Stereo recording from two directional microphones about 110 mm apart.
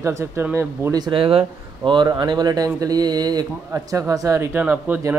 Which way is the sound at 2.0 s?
40° right (ahead or behind).